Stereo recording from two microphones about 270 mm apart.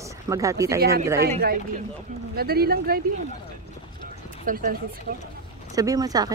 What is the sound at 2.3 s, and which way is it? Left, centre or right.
Speech, right.